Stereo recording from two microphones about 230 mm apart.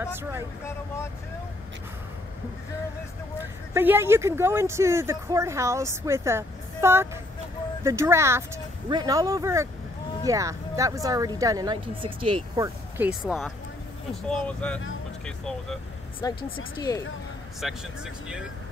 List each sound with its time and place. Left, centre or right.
0.0 s speech: centre
3.7 s speech: centre
12.5 s speech: centre
16.2 s speech: centre
17.6 s speech: centre